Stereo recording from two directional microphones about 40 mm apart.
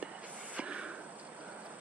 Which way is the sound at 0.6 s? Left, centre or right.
Right.